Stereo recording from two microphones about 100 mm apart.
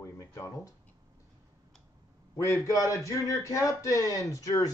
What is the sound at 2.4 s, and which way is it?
Speech, 30° left (ahead or behind).